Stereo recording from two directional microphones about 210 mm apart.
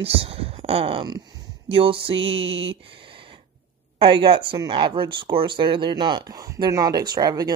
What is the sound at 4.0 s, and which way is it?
Speech, 25° right (ahead or behind).